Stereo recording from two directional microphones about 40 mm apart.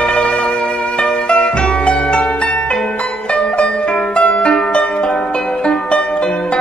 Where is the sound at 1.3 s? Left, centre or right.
Left.